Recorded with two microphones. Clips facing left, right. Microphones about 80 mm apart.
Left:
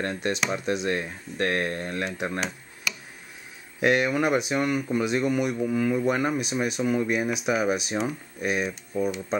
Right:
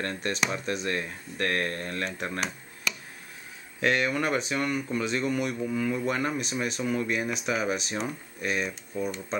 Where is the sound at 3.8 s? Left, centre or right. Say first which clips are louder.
Left 4 dB; centre.